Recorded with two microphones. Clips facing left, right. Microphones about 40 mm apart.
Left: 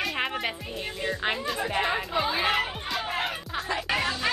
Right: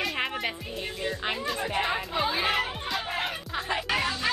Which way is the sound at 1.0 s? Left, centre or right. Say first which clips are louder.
Left 3 dB; centre.